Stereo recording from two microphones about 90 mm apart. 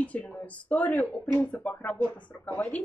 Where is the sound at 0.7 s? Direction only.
15° left (ahead or behind).